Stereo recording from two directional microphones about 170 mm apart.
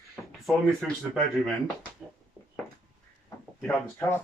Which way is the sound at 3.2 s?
10° left (ahead or behind).